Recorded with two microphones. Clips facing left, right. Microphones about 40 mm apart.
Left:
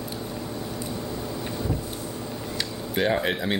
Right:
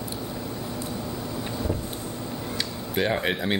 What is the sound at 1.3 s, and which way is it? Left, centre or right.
Vehicle, centre.